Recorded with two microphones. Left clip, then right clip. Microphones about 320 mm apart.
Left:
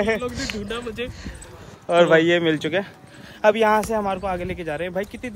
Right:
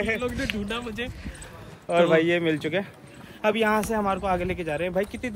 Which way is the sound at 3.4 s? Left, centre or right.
Centre.